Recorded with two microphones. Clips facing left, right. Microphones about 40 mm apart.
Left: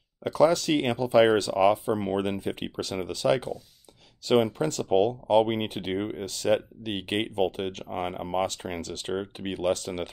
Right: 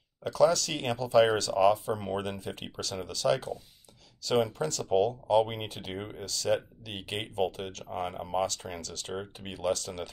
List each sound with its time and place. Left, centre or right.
0.2 s speech: left